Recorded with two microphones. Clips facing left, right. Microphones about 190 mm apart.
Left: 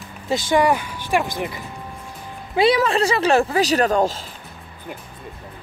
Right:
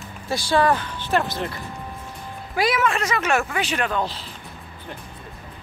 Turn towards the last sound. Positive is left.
turn(degrees=45)  # may be behind; listen again after turning